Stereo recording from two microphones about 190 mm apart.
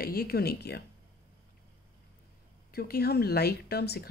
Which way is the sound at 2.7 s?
55° left (ahead or behind).